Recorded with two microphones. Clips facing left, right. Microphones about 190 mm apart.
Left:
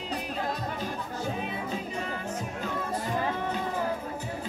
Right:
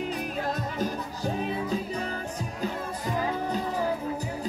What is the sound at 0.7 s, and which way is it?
Music, 40° right (ahead or behind).